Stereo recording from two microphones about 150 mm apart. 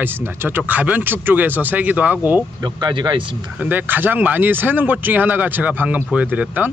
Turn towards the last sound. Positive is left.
turn(degrees=-10)  # may be behind; listen again after turning